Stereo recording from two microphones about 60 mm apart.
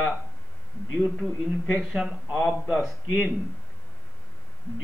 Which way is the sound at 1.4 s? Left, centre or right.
Centre.